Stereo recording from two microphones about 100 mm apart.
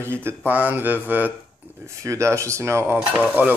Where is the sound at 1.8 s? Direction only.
30° right (ahead or behind).